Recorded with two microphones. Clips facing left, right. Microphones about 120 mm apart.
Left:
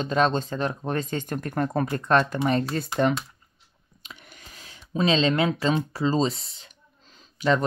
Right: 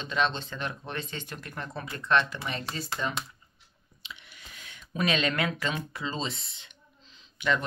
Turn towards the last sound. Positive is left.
turn(degrees=35)  # may be behind; listen again after turning